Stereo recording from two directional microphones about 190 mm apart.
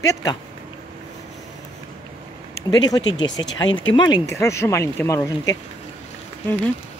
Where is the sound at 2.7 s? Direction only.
20° left (ahead or behind).